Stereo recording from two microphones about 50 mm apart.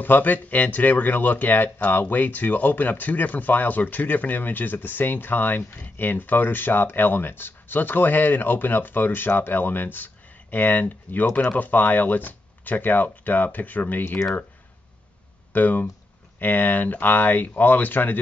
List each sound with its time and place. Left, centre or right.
0.0 s speech: left
15.5 s speech: left